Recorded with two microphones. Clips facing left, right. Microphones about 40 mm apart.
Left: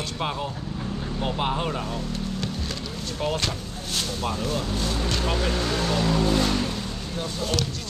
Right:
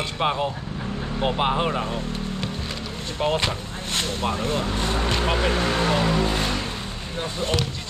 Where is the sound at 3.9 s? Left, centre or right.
Right.